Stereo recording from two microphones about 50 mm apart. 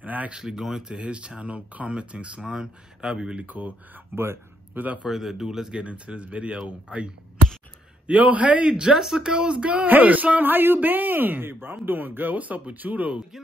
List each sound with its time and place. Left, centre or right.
0.0 s a sound: right
0.3 s speech: centre
0.9 s speech: right
3.3 s speech: right
4.1 s speech: right
4.7 s a man's voice: right
5.0 s speech: centre
5.8 s speech: right
8.1 s speech: right
9.8 s a man's voice: right